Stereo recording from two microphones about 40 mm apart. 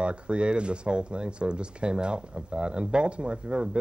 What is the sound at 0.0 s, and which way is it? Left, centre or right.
Speech, right.